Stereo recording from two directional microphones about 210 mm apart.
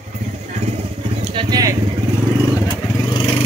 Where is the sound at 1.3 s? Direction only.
15° right (ahead or behind).